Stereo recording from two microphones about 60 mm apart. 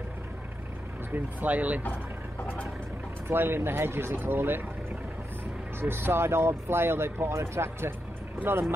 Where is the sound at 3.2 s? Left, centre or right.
Right.